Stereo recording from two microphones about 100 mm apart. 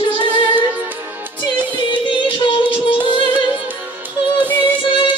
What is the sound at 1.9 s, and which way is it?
Music, 55° left (ahead or behind).